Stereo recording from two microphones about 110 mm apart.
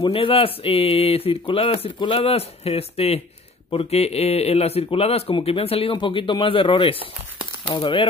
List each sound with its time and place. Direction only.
0.0 s speech: 60° left (ahead or behind)